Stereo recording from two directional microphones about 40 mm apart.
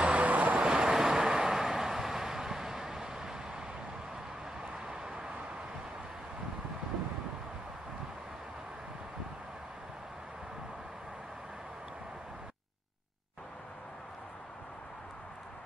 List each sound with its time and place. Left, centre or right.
0.0 s vehicle: right
0.3 s vehicle: right
0.7 s vehicle: centre
4.8 s vehicle: centre